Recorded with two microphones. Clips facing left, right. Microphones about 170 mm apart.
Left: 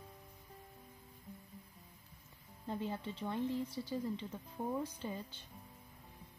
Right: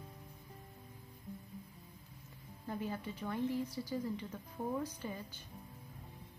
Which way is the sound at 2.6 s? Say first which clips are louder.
Even; 20° left (ahead or behind).